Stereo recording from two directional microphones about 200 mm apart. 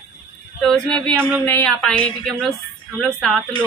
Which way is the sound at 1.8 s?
5° left (ahead or behind).